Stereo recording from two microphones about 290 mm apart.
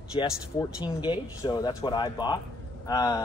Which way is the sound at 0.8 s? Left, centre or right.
Centre.